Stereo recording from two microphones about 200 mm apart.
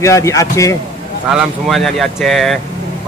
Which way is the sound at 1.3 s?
Centre (ahead or behind).